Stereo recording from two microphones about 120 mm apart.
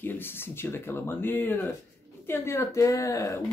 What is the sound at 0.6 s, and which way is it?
Speech, 20° left (ahead or behind).